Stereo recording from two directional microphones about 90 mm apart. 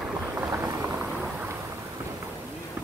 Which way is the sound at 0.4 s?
35° right (ahead or behind).